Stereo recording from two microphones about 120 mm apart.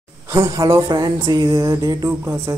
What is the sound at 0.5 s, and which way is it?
Speech, 30° right (ahead or behind).